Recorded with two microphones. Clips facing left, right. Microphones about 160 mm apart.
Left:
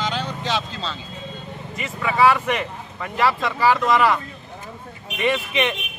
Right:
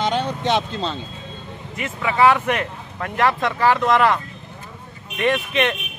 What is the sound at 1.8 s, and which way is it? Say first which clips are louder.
Speech: right 1 dB; centre (ahead or behind).